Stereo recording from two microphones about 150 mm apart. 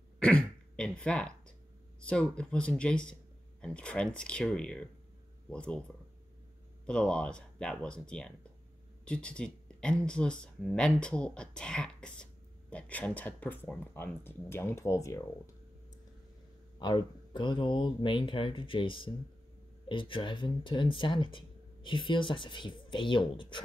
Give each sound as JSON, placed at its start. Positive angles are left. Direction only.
{"t": 0.2, "sound": "throat clearing", "side_deg": 5}
{"t": 2.0, "sound": "speech", "side_deg": 5}
{"t": 6.9, "sound": "speech", "side_deg": 5}
{"t": 16.8, "sound": "speech", "side_deg": 30}